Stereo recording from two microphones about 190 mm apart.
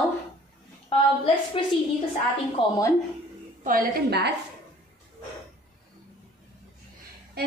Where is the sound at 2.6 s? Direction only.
25° left (ahead or behind).